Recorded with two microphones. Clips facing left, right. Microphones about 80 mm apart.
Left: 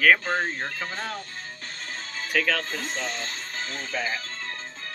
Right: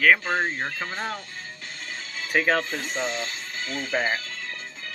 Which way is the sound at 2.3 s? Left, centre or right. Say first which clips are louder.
Right 3 dB; right.